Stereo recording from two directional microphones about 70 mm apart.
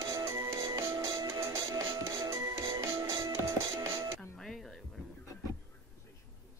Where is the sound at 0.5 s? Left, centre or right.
Right.